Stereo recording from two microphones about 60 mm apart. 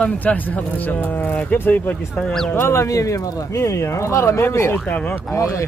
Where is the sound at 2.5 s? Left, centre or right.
Left.